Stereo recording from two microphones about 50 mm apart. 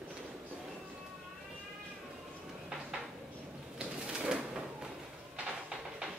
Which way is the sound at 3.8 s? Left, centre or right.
Centre.